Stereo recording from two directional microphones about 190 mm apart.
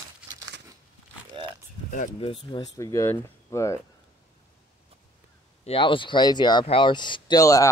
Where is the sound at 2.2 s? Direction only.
25° left (ahead or behind).